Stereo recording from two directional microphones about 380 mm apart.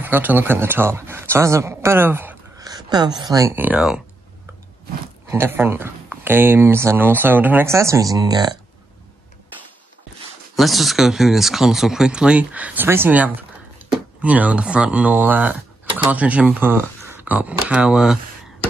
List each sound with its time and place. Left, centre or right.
0.0 s speech: centre
5.3 s speech: centre
10.5 s speech: centre